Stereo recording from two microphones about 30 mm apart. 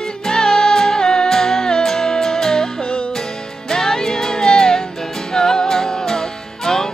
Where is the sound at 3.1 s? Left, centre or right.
Centre.